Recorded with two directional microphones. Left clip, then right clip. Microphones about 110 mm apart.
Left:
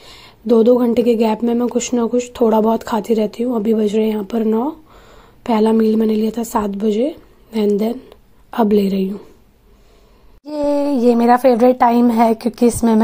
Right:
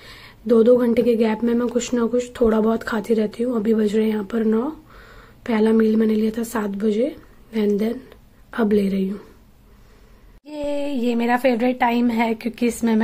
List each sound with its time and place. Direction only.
0.0 s a woman's voice: 35° left (ahead or behind)
10.4 s a woman's voice: 60° left (ahead or behind)